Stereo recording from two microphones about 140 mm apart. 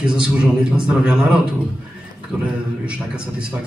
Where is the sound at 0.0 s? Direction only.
5° right (ahead or behind).